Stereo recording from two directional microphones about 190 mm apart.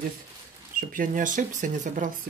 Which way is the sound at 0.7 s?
45° right (ahead or behind).